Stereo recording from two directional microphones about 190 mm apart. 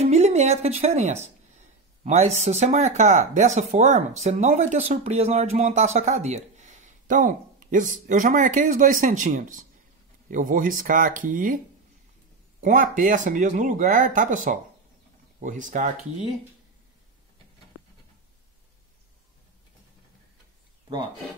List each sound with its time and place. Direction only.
0.0 s speech: 35° right (ahead or behind)